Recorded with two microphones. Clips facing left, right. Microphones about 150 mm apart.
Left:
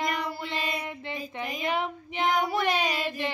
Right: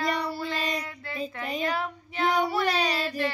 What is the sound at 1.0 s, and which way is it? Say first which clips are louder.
Female singing: right 1 dB; 20° left (ahead or behind).